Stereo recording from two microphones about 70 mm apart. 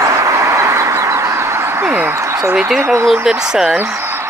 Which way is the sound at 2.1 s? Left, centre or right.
Right.